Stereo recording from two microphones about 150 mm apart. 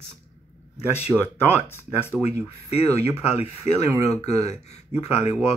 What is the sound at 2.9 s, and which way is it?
Speech, 45° left (ahead or behind).